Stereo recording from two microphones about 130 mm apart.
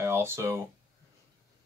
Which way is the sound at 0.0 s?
20° right (ahead or behind).